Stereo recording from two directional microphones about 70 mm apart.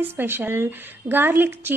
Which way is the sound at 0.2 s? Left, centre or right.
Right.